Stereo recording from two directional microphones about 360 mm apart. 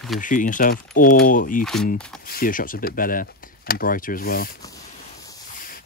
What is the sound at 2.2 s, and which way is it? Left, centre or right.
Speech, left.